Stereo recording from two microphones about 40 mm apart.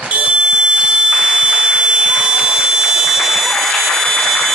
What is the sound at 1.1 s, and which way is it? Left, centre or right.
Buzzer, right.